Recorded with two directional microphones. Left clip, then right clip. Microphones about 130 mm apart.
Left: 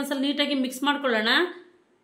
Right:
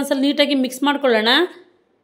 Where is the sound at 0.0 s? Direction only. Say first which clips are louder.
Right 8 dB; 50° right (ahead or behind).